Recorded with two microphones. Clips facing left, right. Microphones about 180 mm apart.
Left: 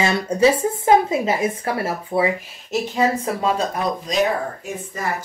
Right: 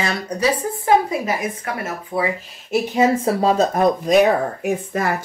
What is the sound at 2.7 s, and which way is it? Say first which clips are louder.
Speech: right 3 dB; 20° right (ahead or behind).